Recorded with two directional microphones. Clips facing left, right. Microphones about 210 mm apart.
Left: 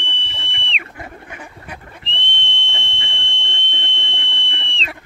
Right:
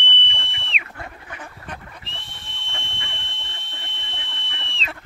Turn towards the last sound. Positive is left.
turn(degrees=0)  # may be behind; listen again after turning